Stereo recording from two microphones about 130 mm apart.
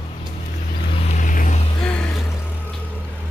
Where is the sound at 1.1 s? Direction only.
90° left.